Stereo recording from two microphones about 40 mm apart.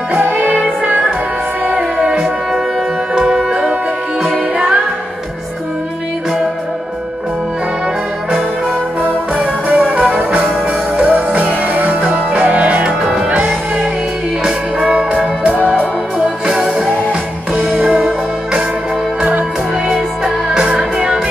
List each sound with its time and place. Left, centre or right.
0.2 s music: right
1.8 s music: right
3.2 s music: centre
9.0 s music: right
11.1 s music: right
12.0 s music: right
13.0 s music: centre
14.4 s music: centre
15.0 s music: right
16.4 s music: centre
17.8 s music: centre
19.9 s music: right